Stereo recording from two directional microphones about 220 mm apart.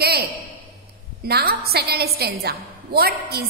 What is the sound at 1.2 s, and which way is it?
A woman's voice, 45° right (ahead or behind).